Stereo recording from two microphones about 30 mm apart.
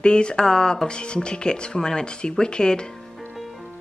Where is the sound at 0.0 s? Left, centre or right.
Left.